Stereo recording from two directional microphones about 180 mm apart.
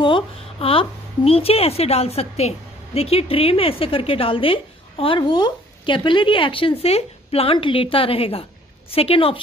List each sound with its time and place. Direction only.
0.0 s speech: 30° left (ahead or behind)